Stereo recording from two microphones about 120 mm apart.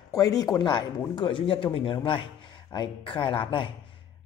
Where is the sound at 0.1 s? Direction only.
30° left (ahead or behind).